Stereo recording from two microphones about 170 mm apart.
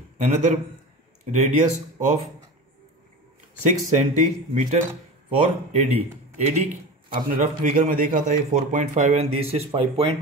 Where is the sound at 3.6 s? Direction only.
45° right (ahead or behind).